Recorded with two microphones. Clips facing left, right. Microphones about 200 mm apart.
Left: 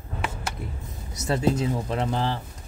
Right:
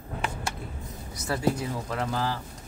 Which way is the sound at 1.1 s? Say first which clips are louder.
Left 3 dB; 20° left (ahead or behind).